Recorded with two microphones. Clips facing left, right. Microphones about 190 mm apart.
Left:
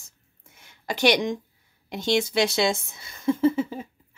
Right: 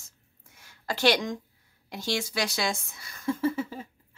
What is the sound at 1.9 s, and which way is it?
Speech, 20° left (ahead or behind).